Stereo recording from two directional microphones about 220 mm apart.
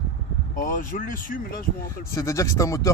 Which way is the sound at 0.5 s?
35° left (ahead or behind).